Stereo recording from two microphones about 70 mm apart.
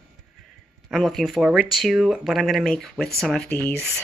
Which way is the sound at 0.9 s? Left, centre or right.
Centre.